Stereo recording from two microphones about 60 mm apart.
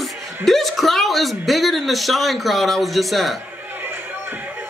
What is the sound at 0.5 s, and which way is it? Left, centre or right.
A woman's voice, centre.